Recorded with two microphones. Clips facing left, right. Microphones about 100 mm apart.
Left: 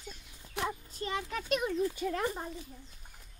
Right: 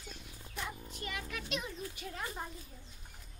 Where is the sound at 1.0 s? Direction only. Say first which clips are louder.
Left 7 dB; 30° left (ahead or behind).